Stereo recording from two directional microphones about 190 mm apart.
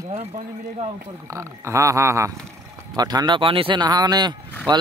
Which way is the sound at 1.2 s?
15° right (ahead or behind).